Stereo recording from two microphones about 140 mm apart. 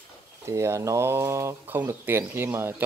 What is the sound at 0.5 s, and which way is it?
Speech, 20° right (ahead or behind).